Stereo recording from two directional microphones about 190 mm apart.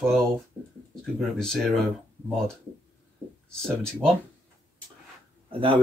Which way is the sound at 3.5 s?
5° left (ahead or behind).